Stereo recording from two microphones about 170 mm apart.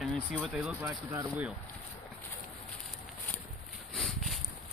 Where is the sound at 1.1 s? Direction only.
10° right (ahead or behind).